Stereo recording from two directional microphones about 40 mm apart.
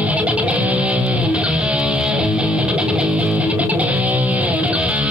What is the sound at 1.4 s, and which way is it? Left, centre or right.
Music, right.